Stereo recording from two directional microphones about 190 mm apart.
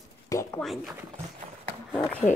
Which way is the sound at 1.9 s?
10° left (ahead or behind).